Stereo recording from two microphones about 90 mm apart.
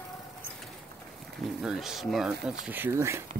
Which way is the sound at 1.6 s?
5° right (ahead or behind).